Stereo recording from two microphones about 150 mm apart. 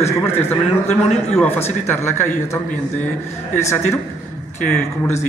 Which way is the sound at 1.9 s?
15° left (ahead or behind).